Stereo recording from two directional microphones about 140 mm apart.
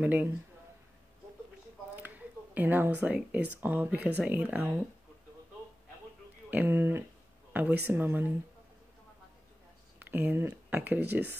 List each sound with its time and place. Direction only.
0.0 s a woman's voice: 10° right (ahead or behind)
2.0 s speech: 10° right (ahead or behind)
6.5 s a woman's voice: 15° right (ahead or behind)
9.9 s speech: 15° right (ahead or behind)